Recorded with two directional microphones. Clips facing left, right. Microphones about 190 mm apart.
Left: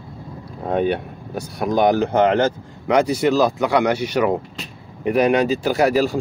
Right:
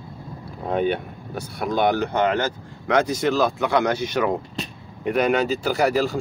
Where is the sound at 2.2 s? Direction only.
30° left (ahead or behind).